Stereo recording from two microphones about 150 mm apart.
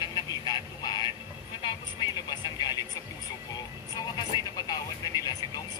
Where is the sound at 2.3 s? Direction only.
30° left (ahead or behind).